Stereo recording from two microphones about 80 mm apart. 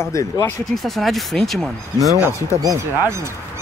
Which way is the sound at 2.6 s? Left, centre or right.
Right.